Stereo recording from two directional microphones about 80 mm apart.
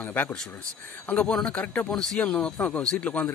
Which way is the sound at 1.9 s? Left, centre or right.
Centre.